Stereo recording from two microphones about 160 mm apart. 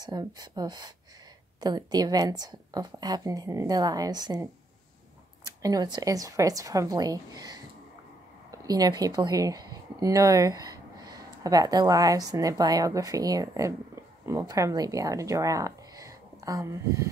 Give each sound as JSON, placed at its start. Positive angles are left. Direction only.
{"t": 0.0, "sound": "a woman's voice", "side_deg": -25}
{"t": 5.6, "sound": "a woman's voice", "side_deg": -25}